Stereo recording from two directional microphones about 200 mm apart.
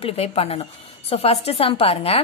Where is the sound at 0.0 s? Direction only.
30° left (ahead or behind).